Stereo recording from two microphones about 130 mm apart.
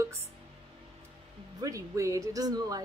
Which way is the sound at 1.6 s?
25° right (ahead or behind).